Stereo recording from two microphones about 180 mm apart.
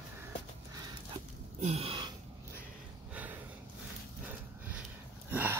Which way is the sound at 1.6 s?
35° right (ahead or behind).